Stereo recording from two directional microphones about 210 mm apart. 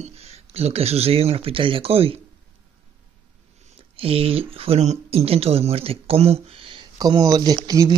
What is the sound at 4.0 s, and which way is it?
Speech, 25° right (ahead or behind).